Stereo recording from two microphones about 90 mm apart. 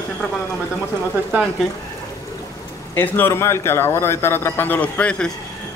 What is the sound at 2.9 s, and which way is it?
A man's voice, 25° left (ahead or behind).